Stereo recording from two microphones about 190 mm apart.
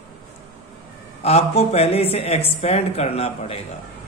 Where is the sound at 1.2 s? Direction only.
35° left (ahead or behind).